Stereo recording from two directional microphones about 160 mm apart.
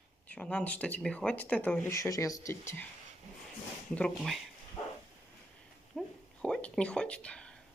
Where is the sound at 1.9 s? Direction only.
20° left (ahead or behind).